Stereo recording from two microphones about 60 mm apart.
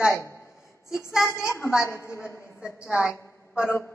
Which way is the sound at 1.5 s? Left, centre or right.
Left.